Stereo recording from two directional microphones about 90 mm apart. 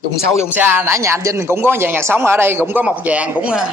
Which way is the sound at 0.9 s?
35° right (ahead or behind).